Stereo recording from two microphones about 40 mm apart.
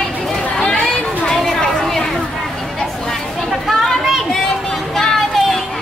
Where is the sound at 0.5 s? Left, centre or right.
Left.